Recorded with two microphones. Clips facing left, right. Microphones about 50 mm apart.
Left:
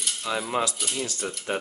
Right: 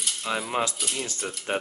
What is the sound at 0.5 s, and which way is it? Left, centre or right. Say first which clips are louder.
Speech: left 1 dB; right.